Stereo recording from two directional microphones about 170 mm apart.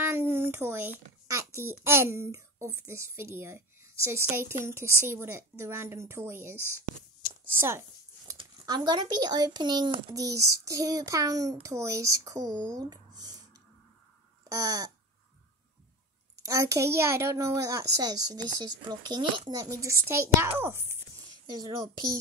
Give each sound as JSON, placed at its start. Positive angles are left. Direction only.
{"t": 0.0, "sound": "a sound", "side_deg": -15}
{"t": 1.9, "sound": "a woman's voice", "side_deg": -15}
{"t": 7.2, "sound": "a sound", "side_deg": 55}
{"t": 8.4, "sound": "speech", "side_deg": -25}
{"t": 14.5, "sound": "speech", "side_deg": -20}
{"t": 16.4, "sound": "a woman's voice", "side_deg": -20}